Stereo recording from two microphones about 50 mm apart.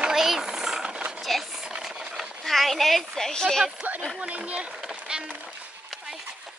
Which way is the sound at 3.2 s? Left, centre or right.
Centre.